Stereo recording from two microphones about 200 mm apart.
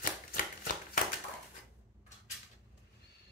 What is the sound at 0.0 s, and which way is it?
Shuffling cards, 45° left (ahead or behind).